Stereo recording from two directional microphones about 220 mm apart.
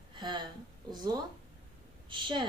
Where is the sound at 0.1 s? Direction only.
20° right (ahead or behind).